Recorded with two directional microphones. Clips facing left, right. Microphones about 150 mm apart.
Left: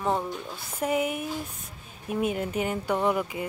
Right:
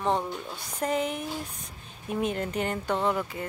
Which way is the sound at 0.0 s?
5° left (ahead or behind).